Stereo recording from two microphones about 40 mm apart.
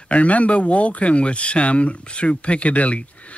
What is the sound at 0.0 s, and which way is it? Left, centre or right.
Speech, left.